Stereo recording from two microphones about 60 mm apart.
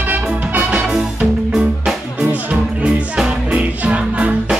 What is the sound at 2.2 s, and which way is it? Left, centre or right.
Music, right.